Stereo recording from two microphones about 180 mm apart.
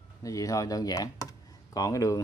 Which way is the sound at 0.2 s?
20° left (ahead or behind).